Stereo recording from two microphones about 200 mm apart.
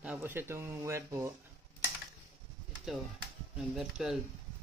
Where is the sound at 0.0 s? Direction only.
10° right (ahead or behind).